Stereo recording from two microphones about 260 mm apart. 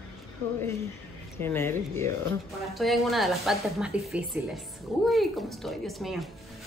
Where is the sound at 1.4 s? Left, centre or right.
Centre.